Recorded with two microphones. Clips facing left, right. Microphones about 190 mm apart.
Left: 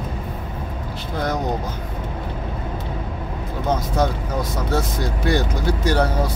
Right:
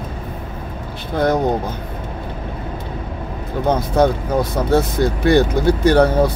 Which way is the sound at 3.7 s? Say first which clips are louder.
Right 6 dB; 60° right (ahead or behind).